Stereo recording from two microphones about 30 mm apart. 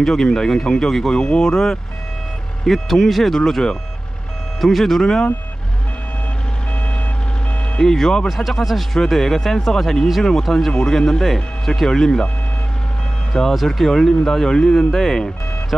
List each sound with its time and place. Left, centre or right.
0.0 s speech: centre
3.3 s speech: centre
4.6 s speech: centre
7.8 s speech: centre
8.5 s speech: centre
8.9 s speech: centre
12.0 s speech: left
13.3 s speech: left
13.7 s speech: centre
14.9 s speech: centre